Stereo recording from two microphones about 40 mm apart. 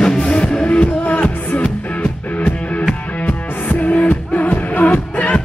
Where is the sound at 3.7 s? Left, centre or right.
Left.